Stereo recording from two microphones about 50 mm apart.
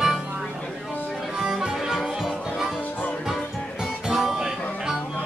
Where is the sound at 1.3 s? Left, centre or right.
Centre.